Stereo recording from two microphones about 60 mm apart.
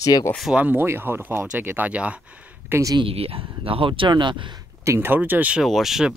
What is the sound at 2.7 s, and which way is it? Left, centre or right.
Speech, right.